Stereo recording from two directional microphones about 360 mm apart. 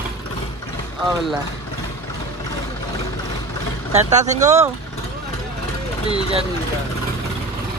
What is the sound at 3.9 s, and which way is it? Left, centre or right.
Speech, centre.